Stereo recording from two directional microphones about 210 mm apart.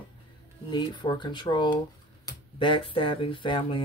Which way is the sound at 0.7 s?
20° left (ahead or behind).